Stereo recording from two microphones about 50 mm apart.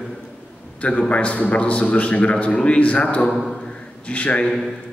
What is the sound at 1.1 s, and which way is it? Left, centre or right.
A man's voice, left.